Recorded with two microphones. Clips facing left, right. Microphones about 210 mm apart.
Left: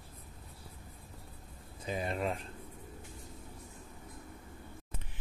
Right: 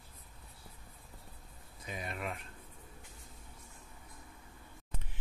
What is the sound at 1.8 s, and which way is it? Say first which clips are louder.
Speech: left 7 dB; 30° left (ahead or behind).